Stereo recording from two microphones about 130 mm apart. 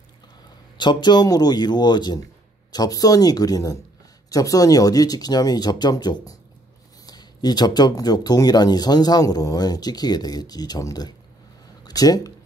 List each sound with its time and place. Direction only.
0.7 s speech: 35° left (ahead or behind)